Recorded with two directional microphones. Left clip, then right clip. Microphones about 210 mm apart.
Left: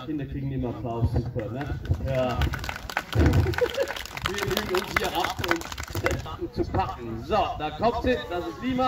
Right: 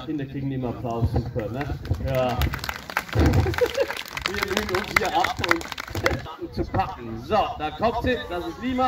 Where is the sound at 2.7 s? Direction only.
55° right (ahead or behind).